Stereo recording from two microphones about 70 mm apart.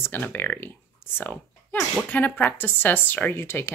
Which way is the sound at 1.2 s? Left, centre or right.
Left.